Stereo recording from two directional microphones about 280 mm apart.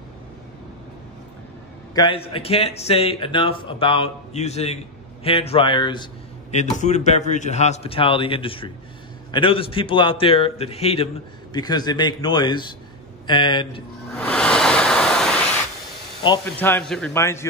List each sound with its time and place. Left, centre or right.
2.0 s a man's voice: centre
14.1 s waves: centre
16.3 s a man's voice: centre